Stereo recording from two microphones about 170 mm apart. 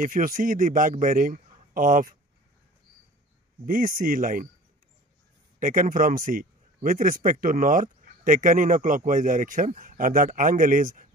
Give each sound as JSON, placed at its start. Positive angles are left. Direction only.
{"t": 0.0, "sound": "a man's voice", "side_deg": -50}
{"t": 3.6, "sound": "a man's voice", "side_deg": -55}
{"t": 5.6, "sound": "a man's voice", "side_deg": -50}